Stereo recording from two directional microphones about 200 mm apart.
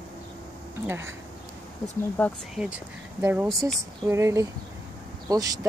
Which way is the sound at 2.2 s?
10° left (ahead or behind).